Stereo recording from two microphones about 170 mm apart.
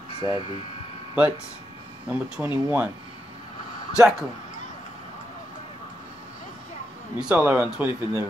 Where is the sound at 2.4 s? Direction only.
Centre (ahead or behind).